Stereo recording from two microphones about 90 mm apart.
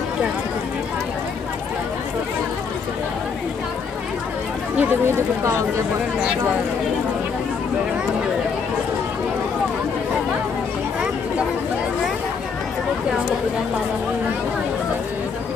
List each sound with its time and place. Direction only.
4.7 s speech: 30° right (ahead or behind)